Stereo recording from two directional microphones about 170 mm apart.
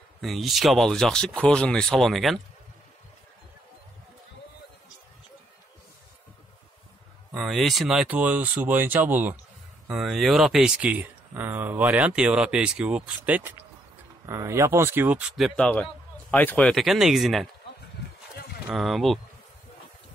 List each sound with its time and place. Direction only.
0.2 s speech: centre (ahead or behind)
7.3 s speech: centre (ahead or behind)
18.3 s a sound: 70° left (ahead or behind)
18.7 s speech: centre (ahead or behind)